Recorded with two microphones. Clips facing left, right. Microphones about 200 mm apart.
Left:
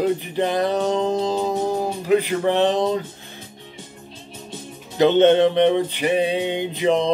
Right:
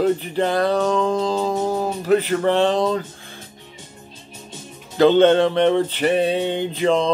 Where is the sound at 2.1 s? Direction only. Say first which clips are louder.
Right 1 dB; 15° left (ahead or behind).